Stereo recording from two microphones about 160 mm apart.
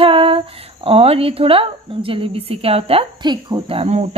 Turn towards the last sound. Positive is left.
turn(degrees=-40)  # may be behind; listen again after turning